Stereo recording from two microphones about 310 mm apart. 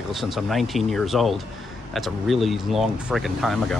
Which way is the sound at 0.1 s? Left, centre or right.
Centre.